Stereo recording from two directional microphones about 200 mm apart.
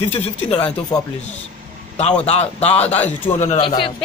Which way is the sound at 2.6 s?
30° left (ahead or behind).